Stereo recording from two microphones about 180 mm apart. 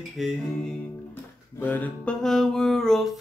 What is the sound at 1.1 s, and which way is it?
Music, 10° left (ahead or behind).